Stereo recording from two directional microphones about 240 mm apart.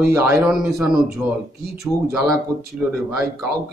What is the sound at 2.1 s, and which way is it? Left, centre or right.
Speech, centre.